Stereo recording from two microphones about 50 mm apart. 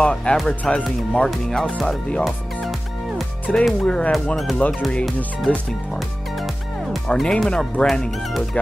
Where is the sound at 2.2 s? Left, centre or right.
Centre.